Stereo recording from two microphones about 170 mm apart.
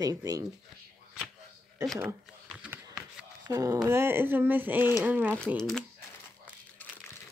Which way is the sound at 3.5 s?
20° right (ahead or behind).